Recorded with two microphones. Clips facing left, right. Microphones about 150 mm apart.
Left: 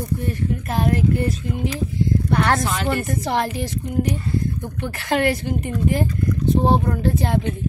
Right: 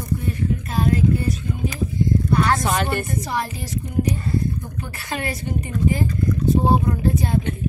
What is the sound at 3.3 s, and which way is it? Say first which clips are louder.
Speech: left 4 dB; 75° left (ahead or behind).